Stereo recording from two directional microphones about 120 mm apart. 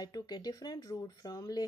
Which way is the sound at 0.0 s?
35° left (ahead or behind).